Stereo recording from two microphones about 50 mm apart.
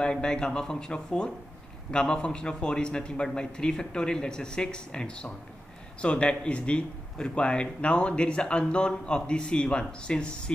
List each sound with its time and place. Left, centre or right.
0.0 s a man's voice: centre